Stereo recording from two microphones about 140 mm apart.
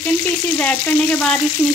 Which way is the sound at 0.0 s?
10° left (ahead or behind).